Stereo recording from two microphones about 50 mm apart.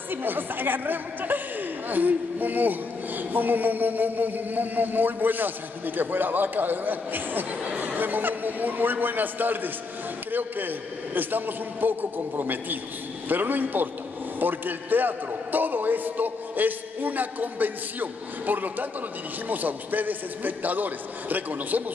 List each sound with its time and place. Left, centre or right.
0.1 s speech: right
11.1 s speech: right